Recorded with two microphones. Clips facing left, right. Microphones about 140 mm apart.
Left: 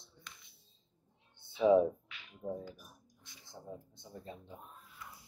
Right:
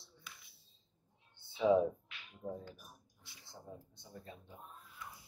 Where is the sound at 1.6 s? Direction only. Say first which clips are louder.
Left 3 dB; 15° left (ahead or behind).